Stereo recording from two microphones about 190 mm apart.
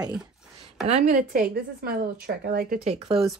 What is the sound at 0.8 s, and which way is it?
Speech, 40° right (ahead or behind).